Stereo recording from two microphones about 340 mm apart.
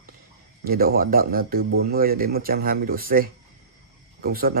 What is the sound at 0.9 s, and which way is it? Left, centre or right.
Speech, right.